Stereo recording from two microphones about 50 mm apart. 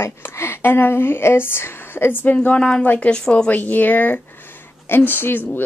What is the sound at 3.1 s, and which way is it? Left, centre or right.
Speech, centre.